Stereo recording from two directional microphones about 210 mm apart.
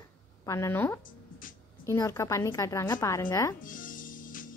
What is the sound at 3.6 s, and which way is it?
Music, 40° left (ahead or behind).